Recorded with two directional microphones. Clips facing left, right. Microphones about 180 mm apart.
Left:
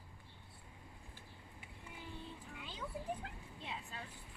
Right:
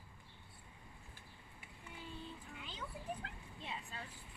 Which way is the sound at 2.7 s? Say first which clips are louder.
Left 3 dB; 15° left (ahead or behind).